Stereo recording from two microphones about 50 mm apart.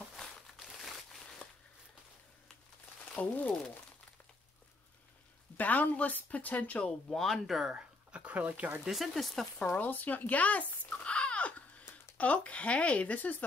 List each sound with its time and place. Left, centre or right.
0.1 s a sound: centre
3.2 s speech: left
5.6 s speech: left
7.1 s speech: centre
7.4 s speech: centre
7.7 s a sound: right
8.8 s speech: centre
9.8 s speech: left
10.9 s a sound: left
12.2 s speech: left